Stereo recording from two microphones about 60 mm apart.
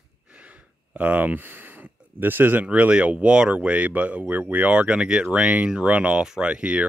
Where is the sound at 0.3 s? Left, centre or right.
Right.